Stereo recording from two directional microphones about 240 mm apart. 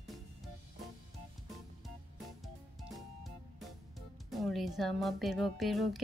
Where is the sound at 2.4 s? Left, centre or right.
Centre.